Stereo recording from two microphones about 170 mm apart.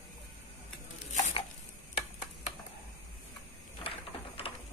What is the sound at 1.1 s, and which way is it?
Chopping, 45° left (ahead or behind).